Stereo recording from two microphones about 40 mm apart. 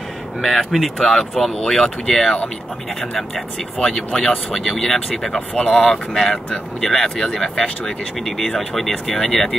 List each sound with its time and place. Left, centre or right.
0.4 s speech: centre
5.5 s speech: left
5.8 s speech: centre